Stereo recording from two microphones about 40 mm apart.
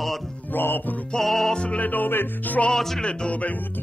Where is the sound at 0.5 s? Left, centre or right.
Left.